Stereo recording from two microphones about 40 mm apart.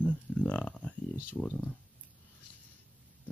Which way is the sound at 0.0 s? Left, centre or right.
Left.